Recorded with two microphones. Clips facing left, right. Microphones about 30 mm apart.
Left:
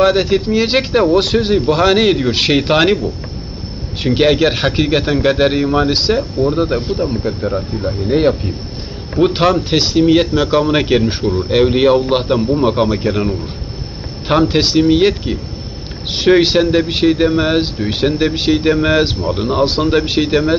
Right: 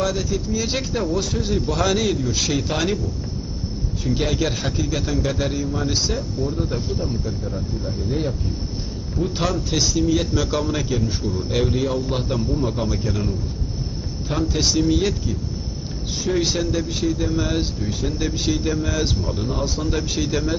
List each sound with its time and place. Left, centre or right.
0.0 s a man's voice: left
4.0 s a man's voice: left
10.8 s a man's voice: left
14.2 s speech: left
14.7 s a man's voice: left
17.4 s a man's voice: left
17.8 s speech: left
18.1 s a man's voice: left